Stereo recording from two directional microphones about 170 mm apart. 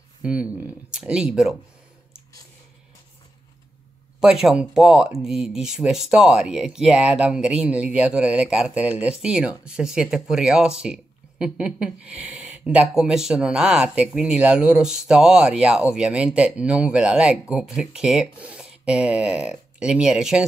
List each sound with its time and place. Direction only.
0.2 s speech: 10° right (ahead or behind)
4.2 s speech: 5° right (ahead or behind)